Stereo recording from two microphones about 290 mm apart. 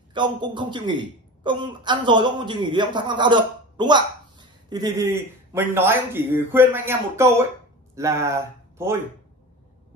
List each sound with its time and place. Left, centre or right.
0.1 s a man's voice: centre